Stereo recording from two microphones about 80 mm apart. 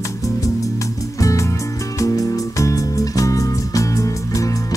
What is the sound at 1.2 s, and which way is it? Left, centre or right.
Music, left.